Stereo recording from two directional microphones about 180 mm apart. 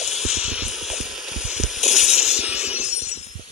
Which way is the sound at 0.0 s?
Centre (ahead or behind).